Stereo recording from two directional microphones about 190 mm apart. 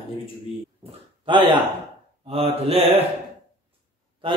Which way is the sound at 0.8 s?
25° right (ahead or behind).